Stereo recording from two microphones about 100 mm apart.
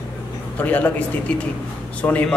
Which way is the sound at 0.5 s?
15° left (ahead or behind).